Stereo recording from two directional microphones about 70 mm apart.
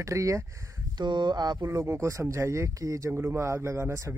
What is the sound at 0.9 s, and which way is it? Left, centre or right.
Speech, right.